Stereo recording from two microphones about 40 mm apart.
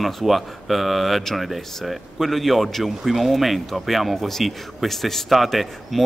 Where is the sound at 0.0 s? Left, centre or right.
Centre.